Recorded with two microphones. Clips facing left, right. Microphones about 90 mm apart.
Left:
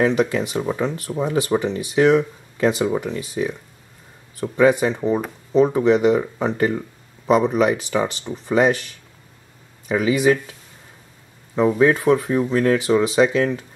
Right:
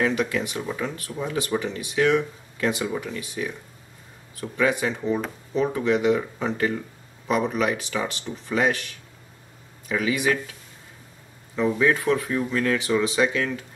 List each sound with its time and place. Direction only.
0.0 s speech: 25° left (ahead or behind)
9.9 s speech: 25° left (ahead or behind)
11.5 s speech: 35° left (ahead or behind)